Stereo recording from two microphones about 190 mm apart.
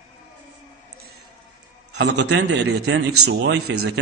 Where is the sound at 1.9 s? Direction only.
65° right (ahead or behind).